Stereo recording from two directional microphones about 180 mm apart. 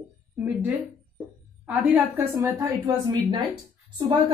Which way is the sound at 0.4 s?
10° right (ahead or behind).